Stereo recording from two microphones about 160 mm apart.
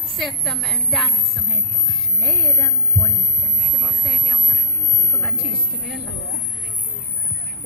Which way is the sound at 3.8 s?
Centre (ahead or behind).